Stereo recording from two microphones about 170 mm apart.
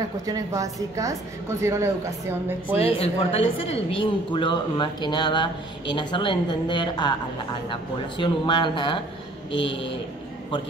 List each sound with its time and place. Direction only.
0.3 s a woman's voice: 20° right (ahead or behind)
2.8 s a woman's voice: 35° left (ahead or behind)
9.5 s speech: 90° left